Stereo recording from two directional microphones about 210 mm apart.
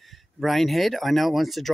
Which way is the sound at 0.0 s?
Centre (ahead or behind).